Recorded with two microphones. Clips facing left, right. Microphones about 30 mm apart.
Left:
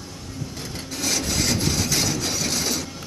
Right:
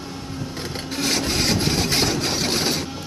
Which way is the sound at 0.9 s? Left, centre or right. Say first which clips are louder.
Right 3 dB; right.